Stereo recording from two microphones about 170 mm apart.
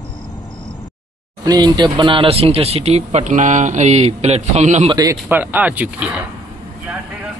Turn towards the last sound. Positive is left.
turn(degrees=-10)  # may be behind; listen again after turning